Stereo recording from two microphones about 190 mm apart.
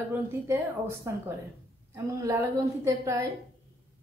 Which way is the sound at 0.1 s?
10° right (ahead or behind).